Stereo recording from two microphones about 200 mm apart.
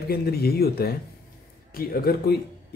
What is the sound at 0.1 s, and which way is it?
Speech, 50° left (ahead or behind).